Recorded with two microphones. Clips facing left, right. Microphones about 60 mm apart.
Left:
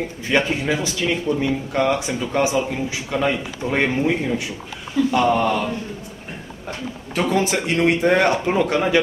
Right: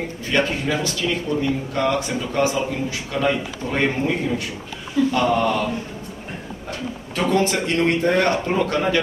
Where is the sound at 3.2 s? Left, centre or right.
Centre.